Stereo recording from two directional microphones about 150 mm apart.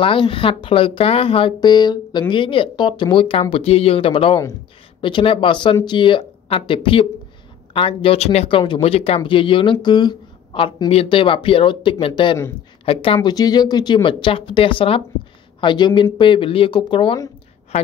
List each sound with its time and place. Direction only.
0.0 s speech: 35° left (ahead or behind)